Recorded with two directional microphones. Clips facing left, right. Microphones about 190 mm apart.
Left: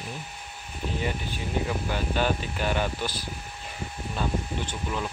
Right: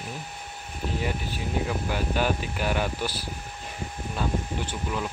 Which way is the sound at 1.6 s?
10° right (ahead or behind).